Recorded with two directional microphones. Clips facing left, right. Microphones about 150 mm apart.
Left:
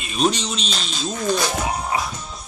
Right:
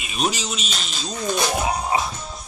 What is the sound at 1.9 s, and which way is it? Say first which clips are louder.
Music: right 2 dB; 25° right (ahead or behind).